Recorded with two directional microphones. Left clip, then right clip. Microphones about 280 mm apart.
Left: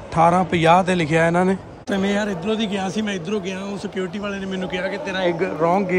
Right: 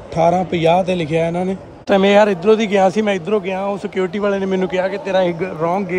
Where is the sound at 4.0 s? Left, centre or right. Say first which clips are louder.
Right 9 dB; right.